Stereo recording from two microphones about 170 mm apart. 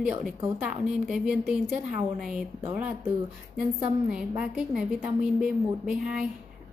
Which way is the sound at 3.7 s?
5° right (ahead or behind).